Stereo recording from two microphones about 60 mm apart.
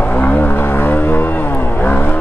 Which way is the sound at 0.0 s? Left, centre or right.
Left.